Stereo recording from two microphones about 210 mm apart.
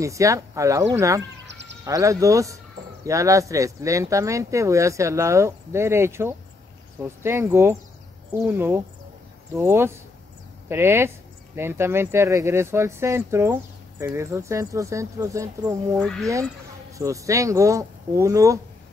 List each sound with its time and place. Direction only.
0.0 s speech: 15° right (ahead or behind)
1.4 s music: 60° right (ahead or behind)
1.9 s speech: 15° right (ahead or behind)
16.0 s speech: centre (ahead or behind)
17.0 s speech: 15° right (ahead or behind)